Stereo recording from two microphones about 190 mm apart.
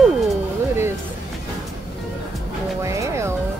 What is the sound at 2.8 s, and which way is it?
Music, 15° right (ahead or behind).